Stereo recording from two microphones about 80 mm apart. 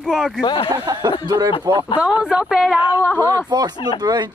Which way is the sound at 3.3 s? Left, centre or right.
Right.